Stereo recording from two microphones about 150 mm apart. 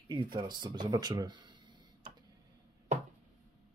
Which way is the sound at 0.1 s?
30° right (ahead or behind).